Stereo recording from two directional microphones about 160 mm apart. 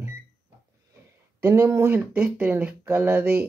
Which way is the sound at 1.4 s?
15° right (ahead or behind).